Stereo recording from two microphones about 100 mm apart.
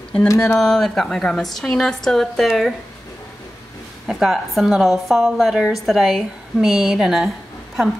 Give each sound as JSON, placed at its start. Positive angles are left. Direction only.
{"t": 0.3, "sound": "speech", "side_deg": 30}
{"t": 0.6, "sound": "a woman's voice", "side_deg": 5}
{"t": 4.1, "sound": "a woman's voice", "side_deg": 0}